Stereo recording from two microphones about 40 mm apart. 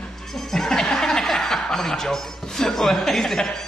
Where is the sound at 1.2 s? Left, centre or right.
Centre.